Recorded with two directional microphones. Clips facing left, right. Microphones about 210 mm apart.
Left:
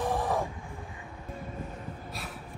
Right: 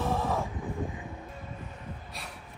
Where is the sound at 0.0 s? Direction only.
15° left (ahead or behind).